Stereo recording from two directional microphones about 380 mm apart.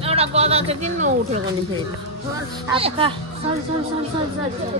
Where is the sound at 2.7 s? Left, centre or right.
Centre.